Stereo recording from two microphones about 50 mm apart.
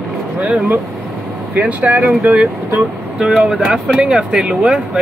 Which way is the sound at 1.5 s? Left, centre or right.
Right.